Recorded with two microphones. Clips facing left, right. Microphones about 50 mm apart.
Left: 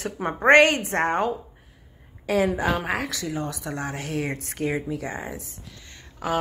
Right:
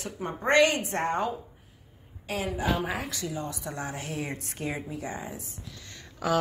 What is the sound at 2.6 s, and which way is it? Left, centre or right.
A woman's voice, left.